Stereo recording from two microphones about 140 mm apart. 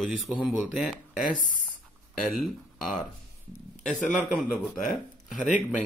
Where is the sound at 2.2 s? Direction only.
Centre (ahead or behind).